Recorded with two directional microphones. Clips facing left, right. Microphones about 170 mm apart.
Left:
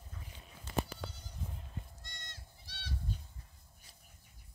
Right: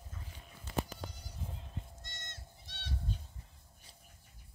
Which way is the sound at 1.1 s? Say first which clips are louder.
Right 1 dB; 10° right (ahead or behind).